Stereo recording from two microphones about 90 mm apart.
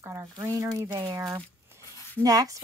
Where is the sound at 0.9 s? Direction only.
55° right (ahead or behind).